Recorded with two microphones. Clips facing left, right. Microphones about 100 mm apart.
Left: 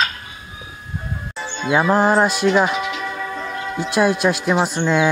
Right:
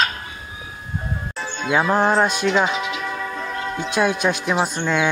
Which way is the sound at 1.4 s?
5° left (ahead or behind).